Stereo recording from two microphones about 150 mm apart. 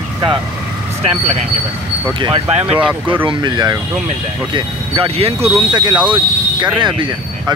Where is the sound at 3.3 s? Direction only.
30° right (ahead or behind).